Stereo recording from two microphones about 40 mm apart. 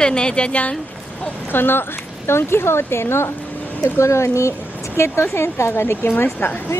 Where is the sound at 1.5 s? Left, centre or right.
Left.